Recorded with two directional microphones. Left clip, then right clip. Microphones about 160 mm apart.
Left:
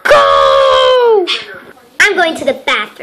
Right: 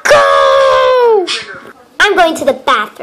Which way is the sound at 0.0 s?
Centre (ahead or behind).